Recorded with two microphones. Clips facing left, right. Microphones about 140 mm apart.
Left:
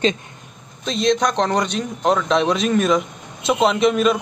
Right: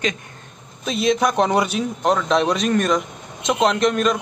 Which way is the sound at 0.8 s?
5° right (ahead or behind).